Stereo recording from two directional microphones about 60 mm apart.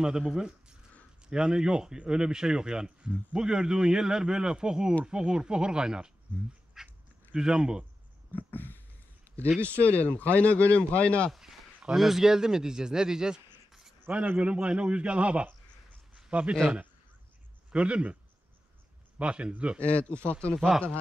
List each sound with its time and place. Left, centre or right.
0.3 s speech: centre
6.8 s duck: centre
7.3 s speech: centre
8.3 s a sound: left
9.6 s speech: left
11.8 s speech: centre
13.7 s a sound: centre
14.1 s a man's voice: right
17.7 s a man's voice: centre
19.1 s a man's voice: centre
19.8 s speech: left
20.5 s speech: centre